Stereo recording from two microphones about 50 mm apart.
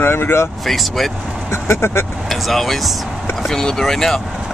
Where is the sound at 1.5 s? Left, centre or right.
Left.